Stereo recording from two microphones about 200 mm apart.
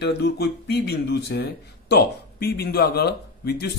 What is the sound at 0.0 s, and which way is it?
Speech, 55° left (ahead or behind).